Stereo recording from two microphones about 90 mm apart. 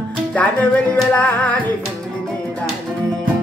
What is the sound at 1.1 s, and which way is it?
Music, 15° left (ahead or behind).